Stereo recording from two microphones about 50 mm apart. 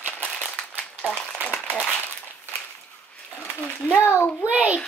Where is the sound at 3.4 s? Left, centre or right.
Left.